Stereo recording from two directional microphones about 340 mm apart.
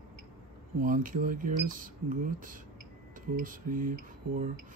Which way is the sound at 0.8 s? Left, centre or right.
Right.